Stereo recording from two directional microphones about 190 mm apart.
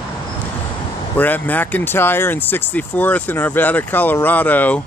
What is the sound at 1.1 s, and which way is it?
Speech, 10° left (ahead or behind).